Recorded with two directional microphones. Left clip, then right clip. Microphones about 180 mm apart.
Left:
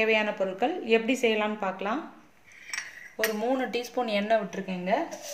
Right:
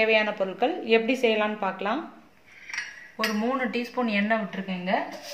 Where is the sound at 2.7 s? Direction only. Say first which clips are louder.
Right 2 dB; 50° left (ahead or behind).